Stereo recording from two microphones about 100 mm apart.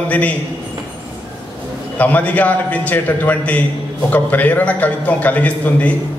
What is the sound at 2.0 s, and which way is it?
A man's voice, 15° left (ahead or behind).